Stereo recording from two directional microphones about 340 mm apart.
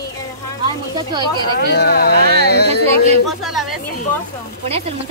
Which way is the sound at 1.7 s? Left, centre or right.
Left.